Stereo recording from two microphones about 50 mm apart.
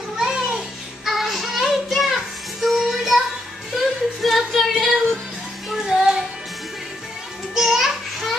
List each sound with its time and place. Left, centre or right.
0.2 s music: centre
1.0 s music: centre
2.6 s child singing: centre
3.7 s a sound: centre
5.7 s music: centre
7.5 s music: centre